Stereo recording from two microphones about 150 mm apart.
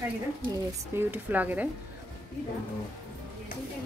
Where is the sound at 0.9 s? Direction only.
10° right (ahead or behind).